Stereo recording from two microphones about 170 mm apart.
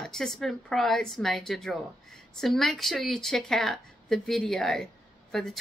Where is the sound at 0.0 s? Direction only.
Centre (ahead or behind).